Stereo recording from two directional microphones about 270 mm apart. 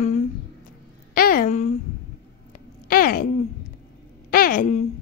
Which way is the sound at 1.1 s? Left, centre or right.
Left.